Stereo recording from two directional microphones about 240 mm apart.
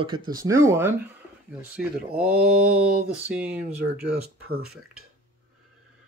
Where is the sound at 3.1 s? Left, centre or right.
Centre.